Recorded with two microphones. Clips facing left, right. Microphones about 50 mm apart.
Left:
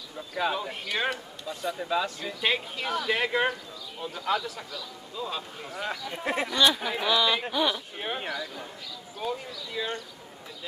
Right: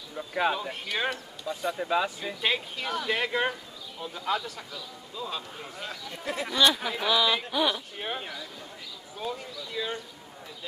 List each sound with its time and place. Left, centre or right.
0.3 s speech: centre
0.6 s speech: centre
2.4 s speech: centre
5.9 s speech: left
6.4 s speech: centre
9.2 s speech: centre